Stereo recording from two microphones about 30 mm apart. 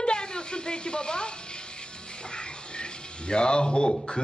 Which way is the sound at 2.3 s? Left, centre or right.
Left.